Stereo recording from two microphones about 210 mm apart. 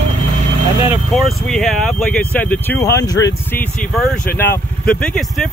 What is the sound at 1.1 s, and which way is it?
Speech, centre (ahead or behind).